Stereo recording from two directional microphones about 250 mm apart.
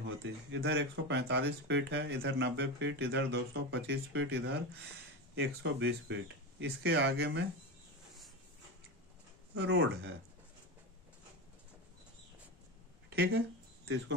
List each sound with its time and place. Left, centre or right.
0.0 s speech: right
9.6 s speech: right
13.1 s speech: right